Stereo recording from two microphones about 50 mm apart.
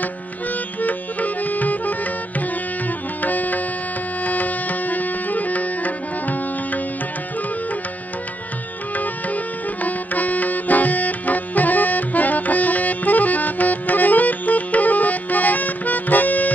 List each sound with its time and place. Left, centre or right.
0.0 s music: left
8.9 s music: left